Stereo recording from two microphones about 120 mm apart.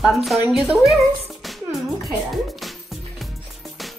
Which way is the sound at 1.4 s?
Centre (ahead or behind).